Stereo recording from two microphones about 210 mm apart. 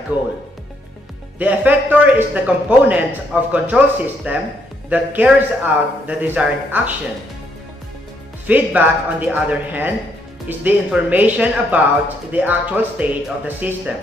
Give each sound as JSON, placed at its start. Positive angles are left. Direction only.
{"t": 0.1, "sound": "speech", "side_deg": 20}
{"t": 1.4, "sound": "a man's voice", "side_deg": -5}
{"t": 8.5, "sound": "a man's voice", "side_deg": -5}